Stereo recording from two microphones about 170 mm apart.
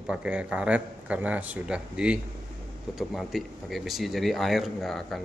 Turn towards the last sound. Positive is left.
turn(degrees=0)  # may be behind; listen again after turning